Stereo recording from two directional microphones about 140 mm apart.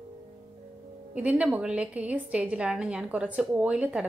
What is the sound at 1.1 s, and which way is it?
A woman's voice, 10° right (ahead or behind).